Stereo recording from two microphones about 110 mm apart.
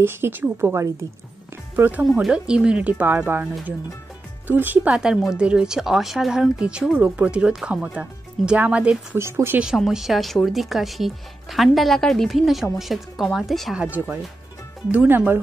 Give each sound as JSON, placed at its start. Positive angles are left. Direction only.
{"t": 0.0, "sound": "a woman's voice", "side_deg": -20}
{"t": 4.5, "sound": "speech", "side_deg": -15}
{"t": 4.9, "sound": "speech", "side_deg": -5}
{"t": 9.2, "sound": "a woman's voice", "side_deg": -25}
{"t": 9.8, "sound": "speech", "side_deg": 0}
{"t": 13.8, "sound": "speech", "side_deg": -15}